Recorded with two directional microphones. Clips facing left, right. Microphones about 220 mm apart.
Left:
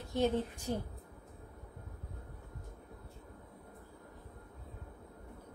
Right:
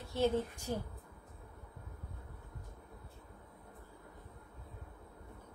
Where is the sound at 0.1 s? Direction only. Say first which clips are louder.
Left 1 dB; 15° left (ahead or behind).